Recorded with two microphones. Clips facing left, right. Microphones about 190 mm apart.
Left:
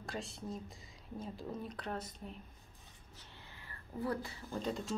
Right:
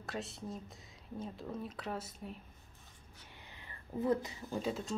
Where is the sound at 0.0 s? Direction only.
Centre (ahead or behind).